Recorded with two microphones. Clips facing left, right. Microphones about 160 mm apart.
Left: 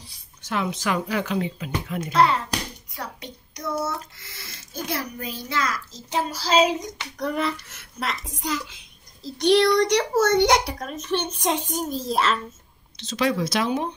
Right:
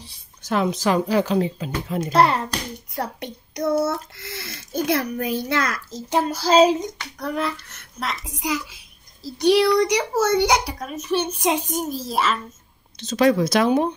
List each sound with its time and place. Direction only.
0.4 s speech: 40° right (ahead or behind)
2.1 s speech: 55° right (ahead or behind)
7.2 s a child's voice: centre (ahead or behind)
12.9 s speech: 45° right (ahead or behind)